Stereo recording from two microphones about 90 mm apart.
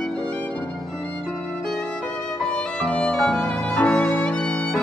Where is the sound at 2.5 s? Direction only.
10° left (ahead or behind).